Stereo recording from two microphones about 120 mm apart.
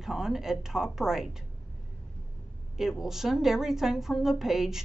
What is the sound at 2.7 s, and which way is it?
A woman's voice, 5° right (ahead or behind).